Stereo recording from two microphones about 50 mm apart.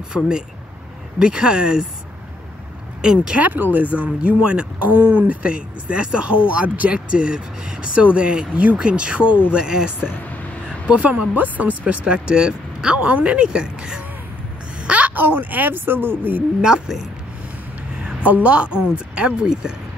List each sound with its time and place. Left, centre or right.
0.2 s speech: left
1.2 s speech: centre
3.3 s speech: right
11.3 s speech: right; by 14.0 s centre
14.8 s a sound: right
15.1 s speech: right
16.6 s speech: centre
18.2 s speech: right